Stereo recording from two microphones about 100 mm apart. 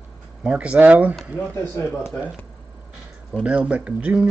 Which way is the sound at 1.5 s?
25° left (ahead or behind).